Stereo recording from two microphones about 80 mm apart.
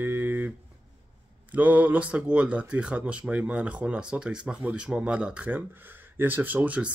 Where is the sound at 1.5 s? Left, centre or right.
Centre.